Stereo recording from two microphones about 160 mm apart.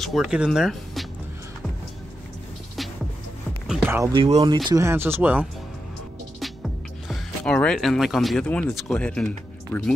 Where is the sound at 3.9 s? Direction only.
15° right (ahead or behind).